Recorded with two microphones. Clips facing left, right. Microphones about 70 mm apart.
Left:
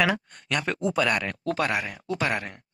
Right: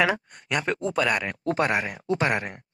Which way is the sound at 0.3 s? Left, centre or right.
Centre.